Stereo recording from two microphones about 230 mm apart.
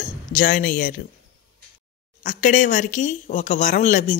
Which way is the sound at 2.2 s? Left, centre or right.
Left.